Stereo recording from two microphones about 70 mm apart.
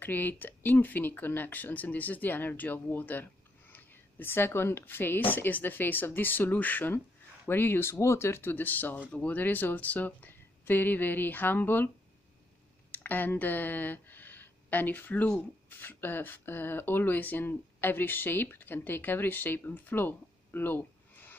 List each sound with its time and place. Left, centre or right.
0.0 s speech: left
12.9 s speech: left